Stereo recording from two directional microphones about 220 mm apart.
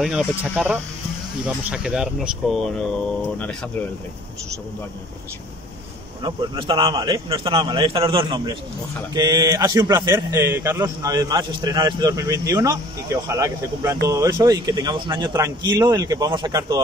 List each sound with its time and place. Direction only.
0.0 s speech: 5° right (ahead or behind)
6.2 s a man's voice: 20° right (ahead or behind)